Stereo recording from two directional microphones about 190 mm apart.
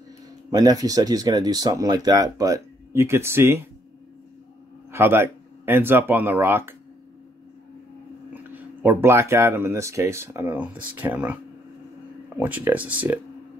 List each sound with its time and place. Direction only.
0.5 s speech: 20° right (ahead or behind)
4.9 s speech: 10° right (ahead or behind)
8.5 s speech: 10° right (ahead or behind)
12.4 s speech: 5° right (ahead or behind)